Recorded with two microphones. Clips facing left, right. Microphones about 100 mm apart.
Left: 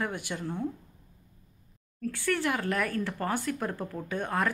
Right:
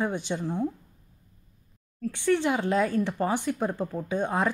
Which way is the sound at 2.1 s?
20° right (ahead or behind).